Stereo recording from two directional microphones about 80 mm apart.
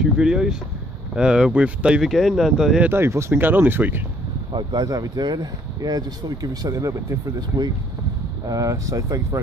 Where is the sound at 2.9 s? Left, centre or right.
Right.